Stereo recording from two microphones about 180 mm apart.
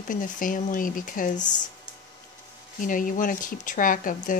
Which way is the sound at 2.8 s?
50° left (ahead or behind).